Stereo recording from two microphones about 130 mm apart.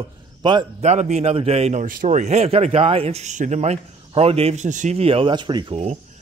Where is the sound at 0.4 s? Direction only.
35° right (ahead or behind).